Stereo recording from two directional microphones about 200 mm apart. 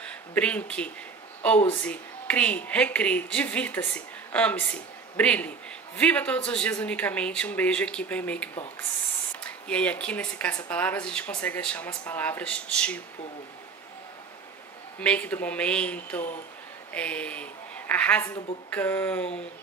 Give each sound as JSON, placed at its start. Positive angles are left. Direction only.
{"t": 0.3, "sound": "speech", "side_deg": 5}
{"t": 15.0, "sound": "speech", "side_deg": 5}